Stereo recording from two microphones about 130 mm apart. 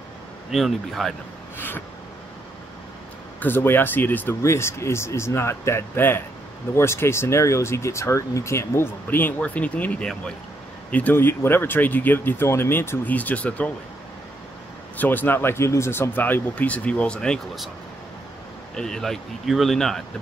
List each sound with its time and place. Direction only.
0.5 s speech: centre (ahead or behind)
3.3 s speech: 15° left (ahead or behind)
15.0 s speech: 15° left (ahead or behind)
18.8 s speech: 5° left (ahead or behind)